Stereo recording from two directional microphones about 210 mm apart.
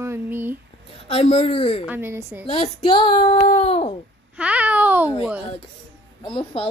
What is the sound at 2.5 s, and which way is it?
Speech, 25° left (ahead or behind).